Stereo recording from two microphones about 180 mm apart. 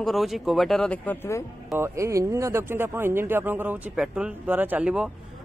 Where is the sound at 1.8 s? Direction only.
15° right (ahead or behind).